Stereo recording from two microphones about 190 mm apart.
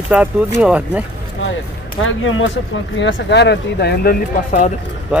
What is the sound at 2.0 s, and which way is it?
Speech, 90° left.